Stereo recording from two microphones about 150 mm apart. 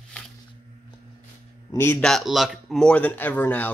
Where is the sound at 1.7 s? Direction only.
15° left (ahead or behind).